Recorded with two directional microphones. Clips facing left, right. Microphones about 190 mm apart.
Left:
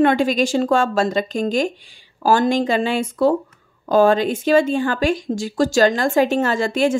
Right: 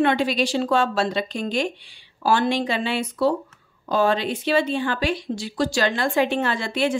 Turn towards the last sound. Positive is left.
turn(degrees=45)  # may be behind; listen again after turning